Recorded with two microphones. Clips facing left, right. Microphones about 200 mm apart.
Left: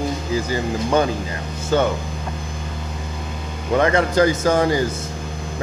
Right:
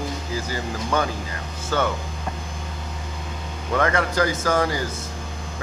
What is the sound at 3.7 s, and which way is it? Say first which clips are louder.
Speech: left 5 dB; 20° left (ahead or behind).